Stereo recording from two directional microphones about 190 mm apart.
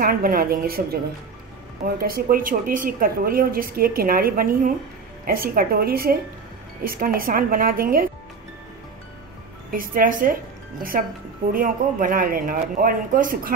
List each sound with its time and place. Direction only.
0.0 s a woman's voice: 50° right (ahead or behind)
2.0 s a woman's voice: 50° right (ahead or behind)
9.7 s a woman's voice: 45° right (ahead or behind)